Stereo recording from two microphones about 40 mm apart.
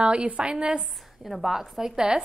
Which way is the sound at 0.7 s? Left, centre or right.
Centre.